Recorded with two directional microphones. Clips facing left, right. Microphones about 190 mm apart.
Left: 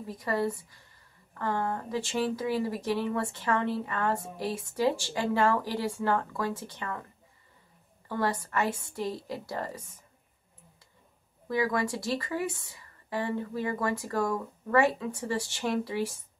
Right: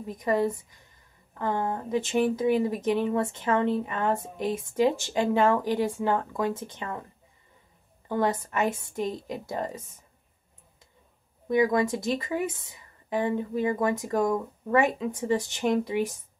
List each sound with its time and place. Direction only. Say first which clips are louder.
0.0 s speech: right 4 dB; 20° right (ahead or behind)
8.1 s speech: right 4 dB; 20° right (ahead or behind)
11.4 s speech: right 5 dB; 20° right (ahead or behind)